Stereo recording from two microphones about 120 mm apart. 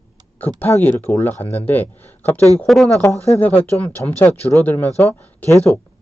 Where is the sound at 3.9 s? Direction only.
15° left (ahead or behind).